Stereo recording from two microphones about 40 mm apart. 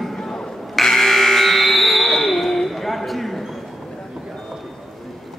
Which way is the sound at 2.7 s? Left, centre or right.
Centre.